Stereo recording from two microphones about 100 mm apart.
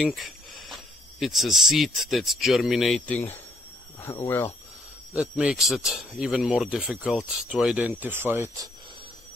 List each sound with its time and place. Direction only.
0.0 s speech: centre (ahead or behind)
4.0 s speech: 25° left (ahead or behind)
5.1 s speech: 15° right (ahead or behind)
5.6 s speech: centre (ahead or behind); by 8.5 s 20° right (ahead or behind)